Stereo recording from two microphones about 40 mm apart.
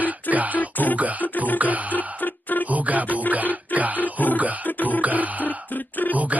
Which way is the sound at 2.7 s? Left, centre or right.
Right.